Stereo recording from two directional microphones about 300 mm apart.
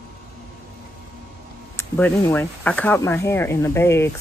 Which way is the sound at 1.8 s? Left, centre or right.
Centre.